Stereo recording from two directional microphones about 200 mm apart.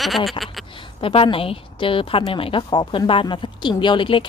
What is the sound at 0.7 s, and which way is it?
A woman's voice, 25° left (ahead or behind).